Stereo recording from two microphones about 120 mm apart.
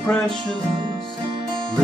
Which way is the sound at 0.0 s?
5° left (ahead or behind).